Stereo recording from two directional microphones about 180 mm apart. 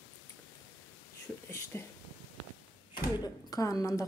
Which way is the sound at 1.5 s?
15° left (ahead or behind).